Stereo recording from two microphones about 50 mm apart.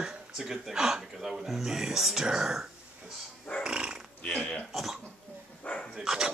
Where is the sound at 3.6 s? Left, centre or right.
Centre.